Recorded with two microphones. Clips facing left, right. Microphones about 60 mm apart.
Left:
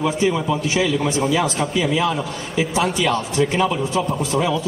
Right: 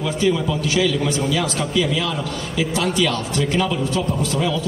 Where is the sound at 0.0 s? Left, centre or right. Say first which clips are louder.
Even; left.